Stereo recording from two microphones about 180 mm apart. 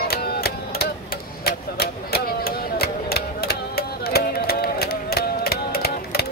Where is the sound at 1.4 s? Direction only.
60° left (ahead or behind).